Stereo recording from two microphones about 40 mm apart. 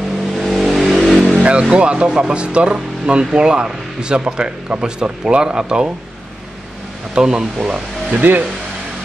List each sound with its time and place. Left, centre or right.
0.4 s vehicle: centre
1.4 s speech: right
7.2 s speech: centre
8.1 s speech: right